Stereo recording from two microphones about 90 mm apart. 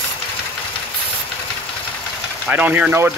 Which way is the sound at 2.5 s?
20° right (ahead or behind).